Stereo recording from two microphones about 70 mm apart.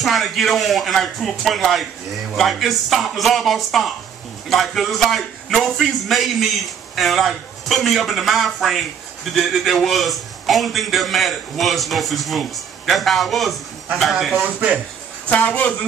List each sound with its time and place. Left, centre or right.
0.0 s a man's voice: centre
14.3 s a man's voice: centre
15.2 s a woman's voice: left